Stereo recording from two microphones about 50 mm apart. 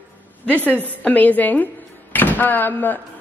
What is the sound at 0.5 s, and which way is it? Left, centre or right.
A man's voice, left.